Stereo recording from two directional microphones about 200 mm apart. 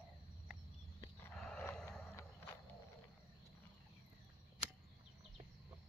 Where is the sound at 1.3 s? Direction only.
Centre (ahead or behind).